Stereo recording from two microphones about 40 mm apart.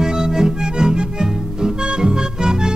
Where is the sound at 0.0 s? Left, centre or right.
Centre.